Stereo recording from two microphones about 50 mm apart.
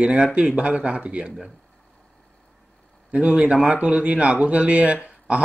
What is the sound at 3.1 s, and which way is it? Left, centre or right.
Speech, right.